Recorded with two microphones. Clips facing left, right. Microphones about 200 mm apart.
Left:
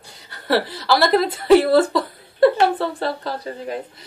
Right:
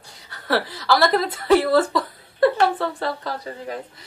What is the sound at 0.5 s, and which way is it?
A woman's voice, 30° left (ahead or behind).